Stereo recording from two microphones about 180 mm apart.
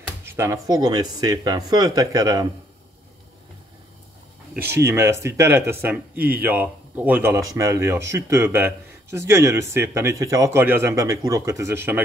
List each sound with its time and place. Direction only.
0.2 s speech: 15° right (ahead or behind)
4.6 s speech: 15° right (ahead or behind)